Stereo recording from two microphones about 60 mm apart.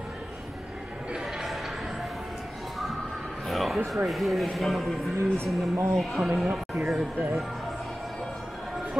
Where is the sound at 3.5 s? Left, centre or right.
Centre.